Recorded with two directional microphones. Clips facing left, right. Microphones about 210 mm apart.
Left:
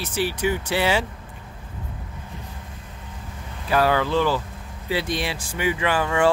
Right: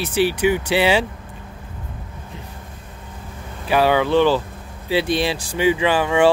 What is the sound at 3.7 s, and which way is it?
Speech, 20° right (ahead or behind).